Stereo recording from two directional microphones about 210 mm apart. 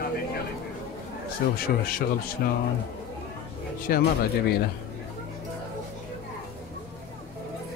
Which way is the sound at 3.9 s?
45° left (ahead or behind).